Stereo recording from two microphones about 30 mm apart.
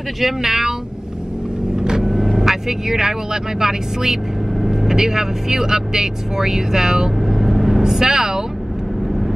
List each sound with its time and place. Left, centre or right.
0.2 s speech: centre
1.8 s speech: centre
7.2 s vehicle: centre
7.8 s speech: centre